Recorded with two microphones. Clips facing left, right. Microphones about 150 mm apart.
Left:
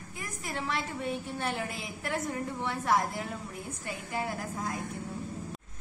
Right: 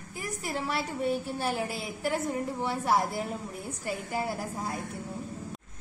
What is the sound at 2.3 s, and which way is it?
A woman's voice, 30° right (ahead or behind).